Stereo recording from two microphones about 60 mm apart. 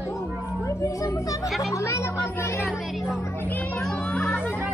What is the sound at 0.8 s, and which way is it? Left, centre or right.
A child's voice, left.